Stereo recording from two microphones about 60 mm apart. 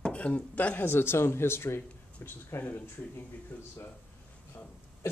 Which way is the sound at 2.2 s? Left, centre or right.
Left.